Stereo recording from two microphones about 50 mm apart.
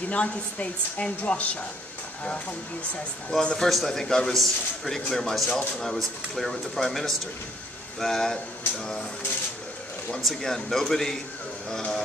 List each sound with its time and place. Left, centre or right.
0.1 s a woman's voice: left
3.4 s a man's voice: centre
10.2 s a man's voice: centre